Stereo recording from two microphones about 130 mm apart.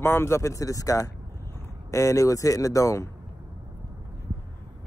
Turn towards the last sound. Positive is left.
turn(degrees=25)  # may be behind; listen again after turning